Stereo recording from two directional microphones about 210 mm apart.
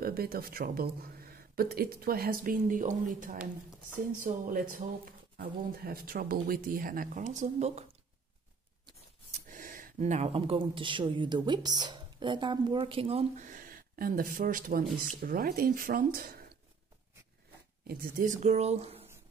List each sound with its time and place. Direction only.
0.0 s speech: 45° right (ahead or behind)
3.3 s a woman's voice: 5° right (ahead or behind)
4.0 s speech: 40° right (ahead or behind)
9.3 s speech: 40° right (ahead or behind)
17.8 s speech: 40° right (ahead or behind)